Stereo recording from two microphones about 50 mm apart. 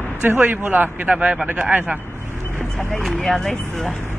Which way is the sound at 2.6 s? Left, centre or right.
Centre.